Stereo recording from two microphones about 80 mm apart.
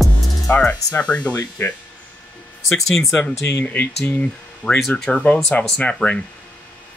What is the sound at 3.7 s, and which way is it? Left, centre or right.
Speech, left.